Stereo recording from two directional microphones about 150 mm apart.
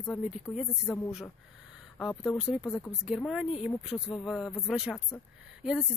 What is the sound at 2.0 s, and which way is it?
Speech, 5° left (ahead or behind).